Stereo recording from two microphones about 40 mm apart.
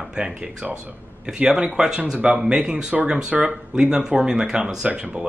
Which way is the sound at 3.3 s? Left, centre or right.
Right.